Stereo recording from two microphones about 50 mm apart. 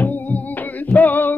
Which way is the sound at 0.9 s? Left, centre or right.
Left.